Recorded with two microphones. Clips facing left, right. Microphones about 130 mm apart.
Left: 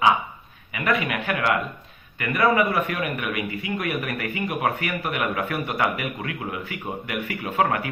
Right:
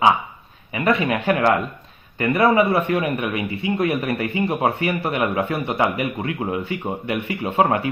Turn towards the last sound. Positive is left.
turn(degrees=-25)  # may be behind; listen again after turning